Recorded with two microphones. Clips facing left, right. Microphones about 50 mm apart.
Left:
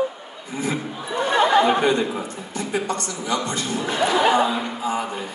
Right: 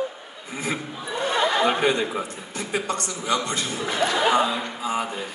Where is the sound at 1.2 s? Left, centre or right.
Left.